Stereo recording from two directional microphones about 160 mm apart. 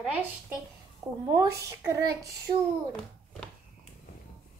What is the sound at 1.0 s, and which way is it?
A woman's voice, 20° right (ahead or behind).